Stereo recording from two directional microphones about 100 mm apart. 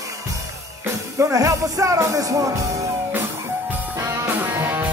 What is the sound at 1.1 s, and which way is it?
Speech, 35° right (ahead or behind).